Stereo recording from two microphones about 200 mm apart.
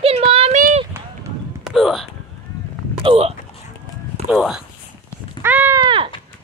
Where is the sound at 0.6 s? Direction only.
45° right (ahead or behind).